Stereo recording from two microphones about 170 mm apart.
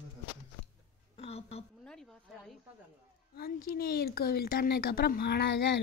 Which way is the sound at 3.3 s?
65° left (ahead or behind).